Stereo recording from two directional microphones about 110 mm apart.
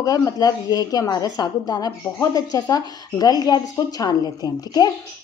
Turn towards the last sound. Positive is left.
turn(degrees=35)  # may be behind; listen again after turning